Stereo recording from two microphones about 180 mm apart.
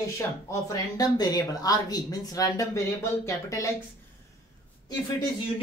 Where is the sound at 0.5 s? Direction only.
20° left (ahead or behind).